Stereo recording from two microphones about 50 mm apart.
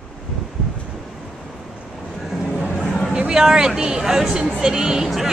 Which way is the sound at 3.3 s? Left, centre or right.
Centre.